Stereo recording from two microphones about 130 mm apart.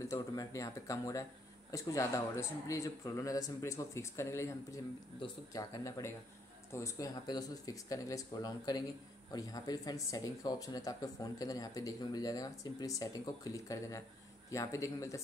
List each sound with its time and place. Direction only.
0.0 s speech: 25° left (ahead or behind)